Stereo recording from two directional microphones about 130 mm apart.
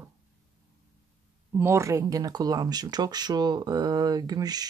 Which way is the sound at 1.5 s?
20° right (ahead or behind).